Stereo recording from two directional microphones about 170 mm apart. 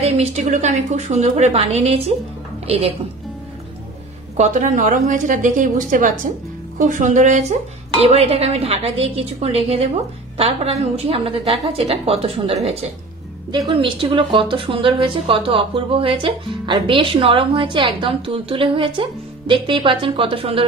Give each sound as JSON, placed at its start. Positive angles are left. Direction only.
{"t": 0.0, "sound": "a woman's voice", "side_deg": -40}
{"t": 4.4, "sound": "a woman's voice", "side_deg": -45}
{"t": 13.7, "sound": "a woman's voice", "side_deg": -30}